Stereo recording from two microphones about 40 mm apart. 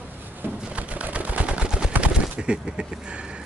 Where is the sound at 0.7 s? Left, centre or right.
Right.